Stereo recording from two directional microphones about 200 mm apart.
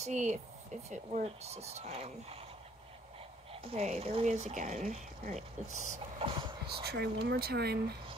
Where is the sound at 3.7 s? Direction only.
35° right (ahead or behind).